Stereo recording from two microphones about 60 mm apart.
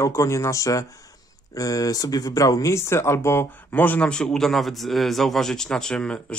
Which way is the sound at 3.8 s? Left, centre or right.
Left.